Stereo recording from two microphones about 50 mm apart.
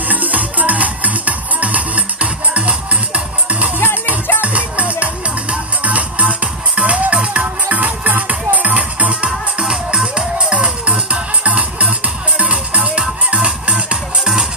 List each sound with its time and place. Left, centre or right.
0.1 s music: right
9.7 s music: centre